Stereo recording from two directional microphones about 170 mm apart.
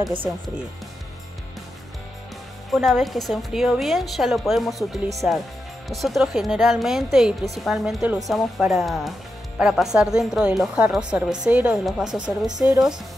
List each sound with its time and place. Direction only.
0.0 s speech: 30° right (ahead or behind)
2.7 s speech: centre (ahead or behind)
12.4 s speech: 20° right (ahead or behind)